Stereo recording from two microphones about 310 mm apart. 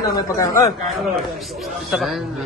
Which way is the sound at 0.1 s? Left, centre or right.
Centre.